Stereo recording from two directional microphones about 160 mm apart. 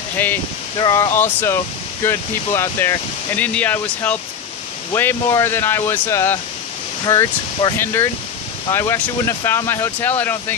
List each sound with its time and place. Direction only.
0.2 s speech: 10° left (ahead or behind)
0.7 s speech: 25° left (ahead or behind)
1.1 s speech: 15° left (ahead or behind)